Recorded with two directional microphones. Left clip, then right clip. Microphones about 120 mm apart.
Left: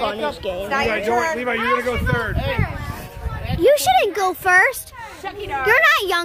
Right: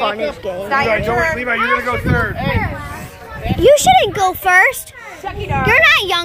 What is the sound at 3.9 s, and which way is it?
A woman's voice, 45° left (ahead or behind).